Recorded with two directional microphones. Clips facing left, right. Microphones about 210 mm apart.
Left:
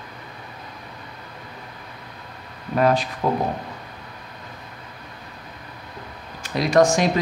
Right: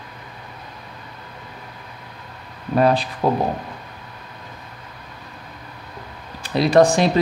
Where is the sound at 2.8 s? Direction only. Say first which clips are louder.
Right 1 dB; 35° right (ahead or behind).